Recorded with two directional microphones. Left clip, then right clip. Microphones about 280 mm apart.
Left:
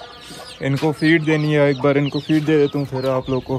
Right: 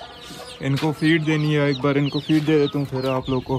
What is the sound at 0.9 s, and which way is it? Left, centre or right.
Speech, centre.